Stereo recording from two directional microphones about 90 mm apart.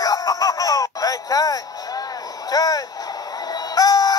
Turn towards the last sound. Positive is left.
turn(degrees=45)  # may be behind; listen again after turning